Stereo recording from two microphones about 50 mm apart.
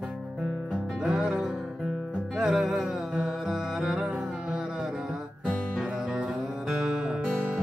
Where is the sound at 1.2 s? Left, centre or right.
Centre.